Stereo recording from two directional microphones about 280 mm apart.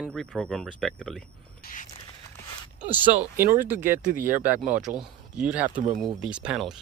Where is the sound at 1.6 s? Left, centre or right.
Left.